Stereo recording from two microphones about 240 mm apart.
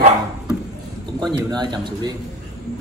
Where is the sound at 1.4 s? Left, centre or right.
Centre.